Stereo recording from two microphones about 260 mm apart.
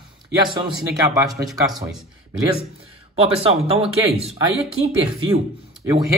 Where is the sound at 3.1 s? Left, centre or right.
Right.